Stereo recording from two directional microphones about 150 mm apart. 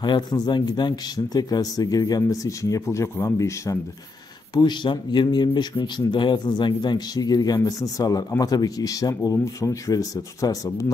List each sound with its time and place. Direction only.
0.0 s speech: 30° left (ahead or behind)